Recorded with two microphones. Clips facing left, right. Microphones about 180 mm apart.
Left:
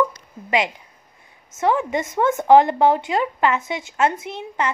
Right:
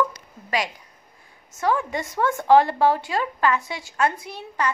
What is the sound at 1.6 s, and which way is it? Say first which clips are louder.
A woman's voice: left 3 dB; 20° left (ahead or behind).